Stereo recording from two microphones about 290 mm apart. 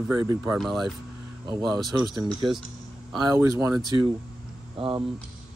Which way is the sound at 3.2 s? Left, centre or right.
Centre.